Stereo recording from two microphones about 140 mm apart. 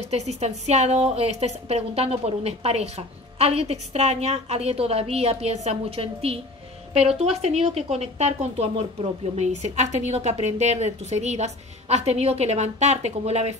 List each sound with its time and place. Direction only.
0.0 s a woman's voice: 50° right (ahead or behind)